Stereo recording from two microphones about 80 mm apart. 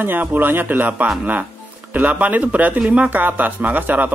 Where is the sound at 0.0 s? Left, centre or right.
Right.